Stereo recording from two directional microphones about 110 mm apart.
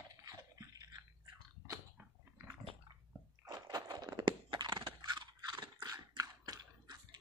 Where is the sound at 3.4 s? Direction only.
40° right (ahead or behind).